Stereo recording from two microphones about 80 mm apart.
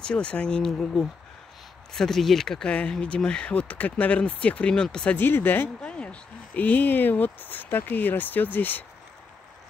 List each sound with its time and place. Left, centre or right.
0.0 s speech: centre
5.1 s speech: left
5.8 s speech: centre